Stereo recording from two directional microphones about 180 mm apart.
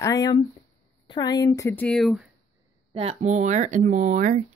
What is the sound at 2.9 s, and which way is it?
Speech, 35° right (ahead or behind).